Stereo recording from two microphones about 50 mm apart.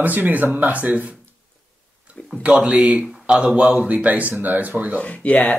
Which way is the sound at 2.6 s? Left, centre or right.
Right.